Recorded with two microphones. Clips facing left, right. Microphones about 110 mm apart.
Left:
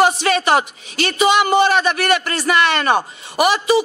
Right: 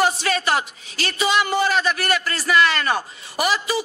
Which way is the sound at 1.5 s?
70° left (ahead or behind).